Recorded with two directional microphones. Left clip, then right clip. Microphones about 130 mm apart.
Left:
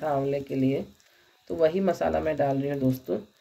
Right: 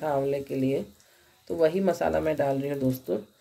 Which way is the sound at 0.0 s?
15° right (ahead or behind).